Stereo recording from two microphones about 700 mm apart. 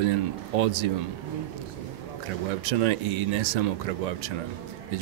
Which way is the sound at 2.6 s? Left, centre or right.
Right.